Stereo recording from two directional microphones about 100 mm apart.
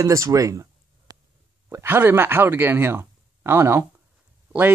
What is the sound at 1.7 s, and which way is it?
Speech, 20° right (ahead or behind).